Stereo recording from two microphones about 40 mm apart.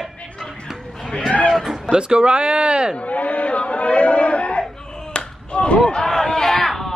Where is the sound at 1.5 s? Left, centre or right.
Centre.